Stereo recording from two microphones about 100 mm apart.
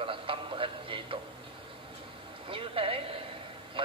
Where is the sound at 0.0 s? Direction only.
60° right (ahead or behind).